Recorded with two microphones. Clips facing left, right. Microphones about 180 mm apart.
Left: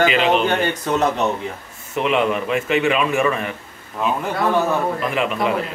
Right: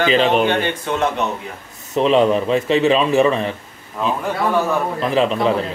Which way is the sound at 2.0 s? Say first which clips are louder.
Right 5 dB; 35° right (ahead or behind).